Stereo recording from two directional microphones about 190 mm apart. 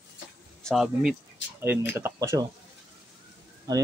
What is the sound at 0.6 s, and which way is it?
Speech, centre (ahead or behind).